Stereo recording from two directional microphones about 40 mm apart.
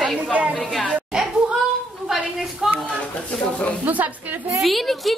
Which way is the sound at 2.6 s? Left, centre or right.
Centre.